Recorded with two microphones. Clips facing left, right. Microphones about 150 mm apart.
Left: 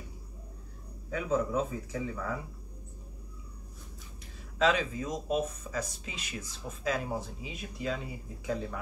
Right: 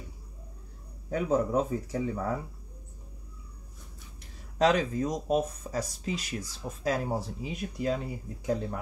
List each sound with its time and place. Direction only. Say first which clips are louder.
1.1 s speech: right 3 dB; 40° right (ahead or behind)
4.6 s speech: right 3 dB; 40° right (ahead or behind)